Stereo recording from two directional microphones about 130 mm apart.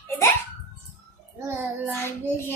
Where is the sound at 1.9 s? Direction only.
20° left (ahead or behind).